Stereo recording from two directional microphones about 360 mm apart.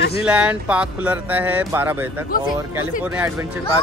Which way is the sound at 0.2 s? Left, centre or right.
Centre.